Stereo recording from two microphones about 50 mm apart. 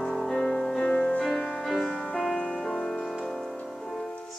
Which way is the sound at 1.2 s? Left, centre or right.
Centre.